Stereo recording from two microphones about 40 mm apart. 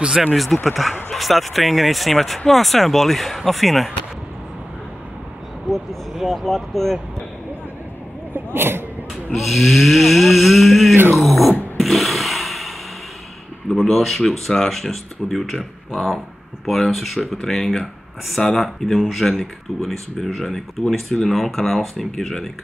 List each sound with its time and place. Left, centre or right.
0.2 s speech: centre
6.1 s speech: centre
6.4 s speech: centre
8.5 s speech: right
9.1 s speech: centre
11.8 s a sound: centre
13.7 s speech: centre